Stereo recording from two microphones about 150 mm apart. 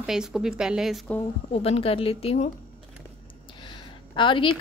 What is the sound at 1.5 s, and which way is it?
Speech, 40° left (ahead or behind).